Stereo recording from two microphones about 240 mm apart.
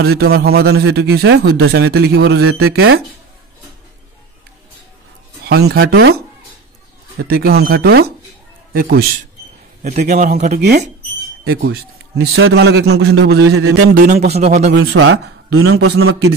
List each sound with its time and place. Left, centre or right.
0.2 s a man's voice: right
5.4 s a man's voice: right
7.2 s a man's voice: right
14.7 s a man's voice: right